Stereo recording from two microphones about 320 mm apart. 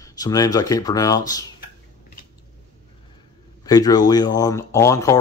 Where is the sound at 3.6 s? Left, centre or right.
Centre.